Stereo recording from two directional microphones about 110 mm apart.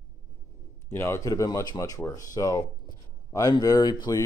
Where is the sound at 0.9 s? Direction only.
25° left (ahead or behind).